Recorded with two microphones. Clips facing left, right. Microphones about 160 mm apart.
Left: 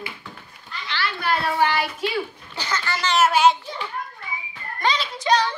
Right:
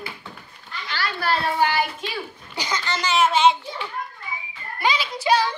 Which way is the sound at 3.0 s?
5° left (ahead or behind).